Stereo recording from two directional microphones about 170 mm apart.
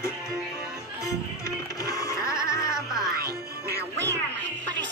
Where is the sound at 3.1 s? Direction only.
65° right (ahead or behind).